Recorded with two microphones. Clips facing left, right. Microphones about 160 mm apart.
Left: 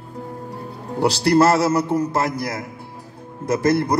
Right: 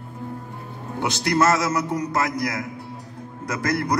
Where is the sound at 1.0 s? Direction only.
35° left (ahead or behind).